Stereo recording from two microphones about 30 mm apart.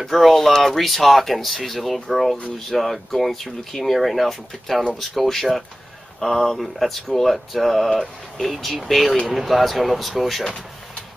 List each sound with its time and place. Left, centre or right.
0.1 s speech: centre
7.1 s speech: centre